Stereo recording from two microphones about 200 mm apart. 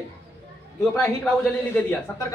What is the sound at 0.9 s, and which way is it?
A man's voice, 10° left (ahead or behind).